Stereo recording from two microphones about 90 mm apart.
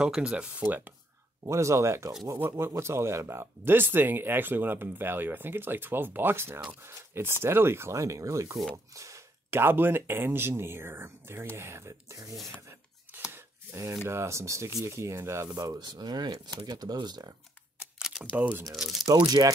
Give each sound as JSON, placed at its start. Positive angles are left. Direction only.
{"t": 0.0, "sound": "speech", "side_deg": -10}
{"t": 1.4, "sound": "speech", "side_deg": -35}
{"t": 12.5, "sound": "a sound", "side_deg": -25}
{"t": 13.3, "sound": "chopping", "side_deg": -30}
{"t": 14.0, "sound": "speech", "side_deg": -30}
{"t": 17.9, "sound": "computer keyboard", "side_deg": -5}
{"t": 18.3, "sound": "speech", "side_deg": -15}
{"t": 18.7, "sound": "speech", "side_deg": 0}
{"t": 19.0, "sound": "speech", "side_deg": -50}